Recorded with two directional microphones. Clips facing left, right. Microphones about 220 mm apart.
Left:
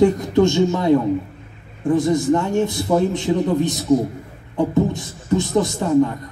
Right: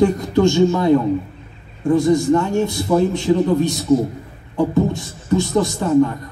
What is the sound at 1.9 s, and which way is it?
A man's voice, 20° left (ahead or behind).